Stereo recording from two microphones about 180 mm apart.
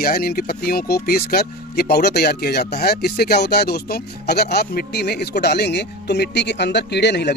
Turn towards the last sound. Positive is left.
turn(degrees=70)  # may be behind; listen again after turning